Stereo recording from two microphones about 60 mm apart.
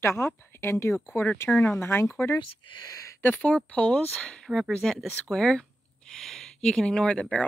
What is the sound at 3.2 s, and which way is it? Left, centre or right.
Speech, left.